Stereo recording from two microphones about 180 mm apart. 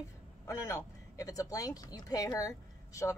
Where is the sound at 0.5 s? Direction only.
15° left (ahead or behind).